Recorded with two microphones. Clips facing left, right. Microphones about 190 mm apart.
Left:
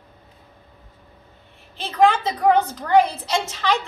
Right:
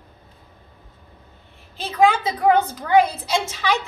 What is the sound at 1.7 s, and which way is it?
A woman's voice, 5° right (ahead or behind).